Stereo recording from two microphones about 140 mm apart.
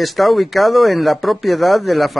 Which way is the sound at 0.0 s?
Centre (ahead or behind).